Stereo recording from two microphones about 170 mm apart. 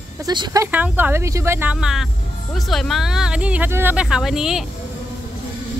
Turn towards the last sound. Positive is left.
turn(degrees=-5)  # may be behind; listen again after turning